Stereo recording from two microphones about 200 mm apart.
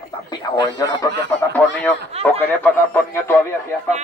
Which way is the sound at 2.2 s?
30° right (ahead or behind).